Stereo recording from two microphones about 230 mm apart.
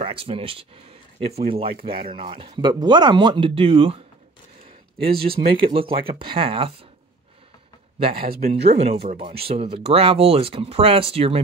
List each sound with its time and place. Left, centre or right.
0.0 s speech: right
1.7 s speech: right
2.2 s speech: right
5.3 s speech: right
8.3 s speech: right
8.7 s speech: right